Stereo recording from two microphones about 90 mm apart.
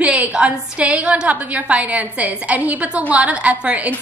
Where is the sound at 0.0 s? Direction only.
15° right (ahead or behind).